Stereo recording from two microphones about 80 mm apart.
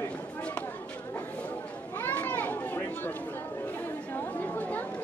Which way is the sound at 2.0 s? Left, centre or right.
Left.